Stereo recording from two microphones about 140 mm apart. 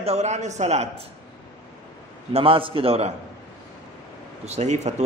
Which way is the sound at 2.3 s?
40° right (ahead or behind).